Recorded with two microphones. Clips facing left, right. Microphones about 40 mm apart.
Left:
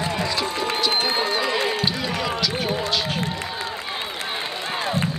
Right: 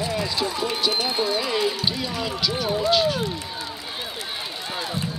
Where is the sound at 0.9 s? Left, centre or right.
Left.